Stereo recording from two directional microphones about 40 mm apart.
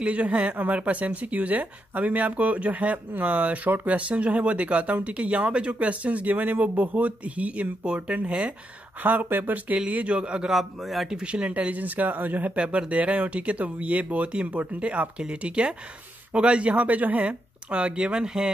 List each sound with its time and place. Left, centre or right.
0.0 s speech: right
9.0 s speech: right
9.8 s speech: right
10.1 s speech: right
10.5 s a man's voice: centre
11.2 s speech: right
12.5 s speech: right
16.7 s speech: right; by 18.5 s centre